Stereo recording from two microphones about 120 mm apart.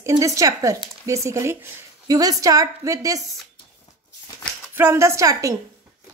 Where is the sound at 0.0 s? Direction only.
25° right (ahead or behind).